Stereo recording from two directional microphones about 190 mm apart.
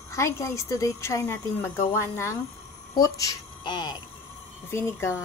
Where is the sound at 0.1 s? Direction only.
15° left (ahead or behind).